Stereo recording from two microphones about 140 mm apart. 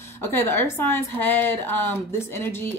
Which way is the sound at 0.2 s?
15° left (ahead or behind).